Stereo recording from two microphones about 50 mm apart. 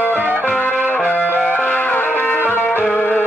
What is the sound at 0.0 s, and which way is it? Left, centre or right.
Music, left.